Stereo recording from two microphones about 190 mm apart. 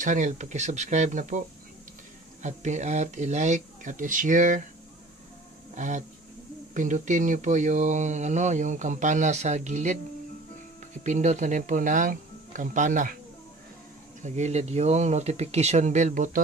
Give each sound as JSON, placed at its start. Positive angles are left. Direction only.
{"t": 0.0, "sound": "speech", "side_deg": -40}
{"t": 2.4, "sound": "speech", "side_deg": -40}
{"t": 5.8, "sound": "speech", "side_deg": -40}
{"t": 11.1, "sound": "speech", "side_deg": -40}
{"t": 14.2, "sound": "speech", "side_deg": -35}